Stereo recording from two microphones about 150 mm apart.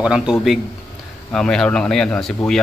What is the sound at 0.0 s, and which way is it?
A man's voice, 5° right (ahead or behind).